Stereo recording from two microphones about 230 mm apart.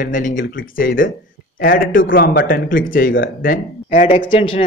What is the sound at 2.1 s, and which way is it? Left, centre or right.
Speech, left.